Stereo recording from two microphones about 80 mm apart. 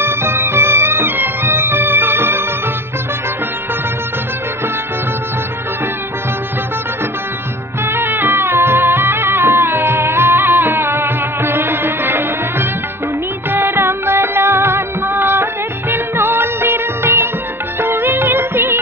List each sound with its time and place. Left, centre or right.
0.0 s music: right
7.8 s music: right